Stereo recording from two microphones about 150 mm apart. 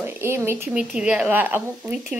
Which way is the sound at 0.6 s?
5° right (ahead or behind).